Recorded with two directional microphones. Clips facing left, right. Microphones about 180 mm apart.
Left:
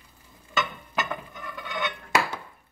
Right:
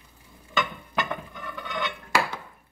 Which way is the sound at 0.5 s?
Centre (ahead or behind).